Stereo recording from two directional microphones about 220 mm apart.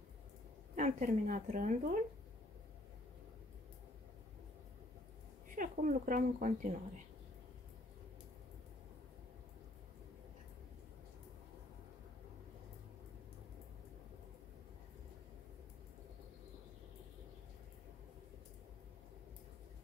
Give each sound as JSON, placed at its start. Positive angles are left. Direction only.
{"t": 0.7, "sound": "speech", "side_deg": -35}
{"t": 5.6, "sound": "speech", "side_deg": -35}